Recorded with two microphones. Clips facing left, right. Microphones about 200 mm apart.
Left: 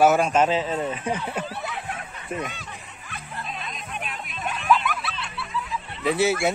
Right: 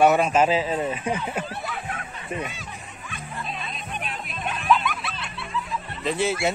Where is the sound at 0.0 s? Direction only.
Centre (ahead or behind).